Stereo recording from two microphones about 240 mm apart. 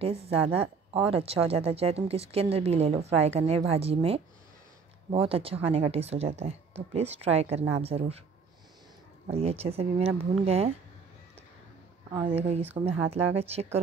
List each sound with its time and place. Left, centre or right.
0.0 s speech: right
9.3 s speech: right
12.1 s speech: right